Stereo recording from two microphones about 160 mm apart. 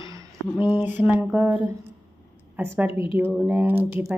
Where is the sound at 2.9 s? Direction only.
35° left (ahead or behind).